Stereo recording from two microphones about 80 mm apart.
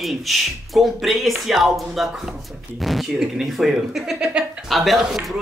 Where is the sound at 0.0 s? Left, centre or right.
Centre.